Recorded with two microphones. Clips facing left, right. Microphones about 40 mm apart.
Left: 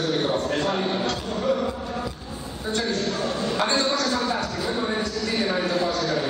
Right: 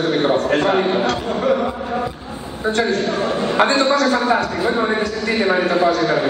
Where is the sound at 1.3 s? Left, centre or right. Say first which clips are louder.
Right 4 dB; right.